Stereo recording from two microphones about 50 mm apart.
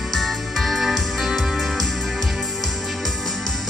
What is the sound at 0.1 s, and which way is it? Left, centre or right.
Music, centre.